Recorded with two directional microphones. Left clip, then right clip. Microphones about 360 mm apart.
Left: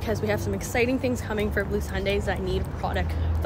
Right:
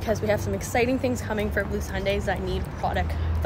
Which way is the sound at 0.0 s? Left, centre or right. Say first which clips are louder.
Right 2 dB; centre.